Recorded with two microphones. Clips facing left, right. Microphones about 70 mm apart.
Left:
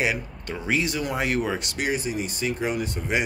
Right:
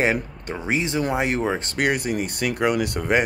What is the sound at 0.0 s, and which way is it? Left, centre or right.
Speech, right.